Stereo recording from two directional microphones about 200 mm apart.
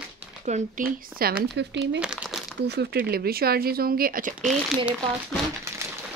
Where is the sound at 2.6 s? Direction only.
55° right (ahead or behind).